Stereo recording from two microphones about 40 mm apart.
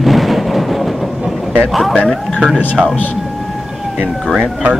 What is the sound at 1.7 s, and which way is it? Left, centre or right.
Speech, centre.